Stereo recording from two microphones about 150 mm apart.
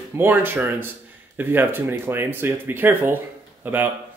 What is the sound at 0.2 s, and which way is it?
Speech, 15° right (ahead or behind).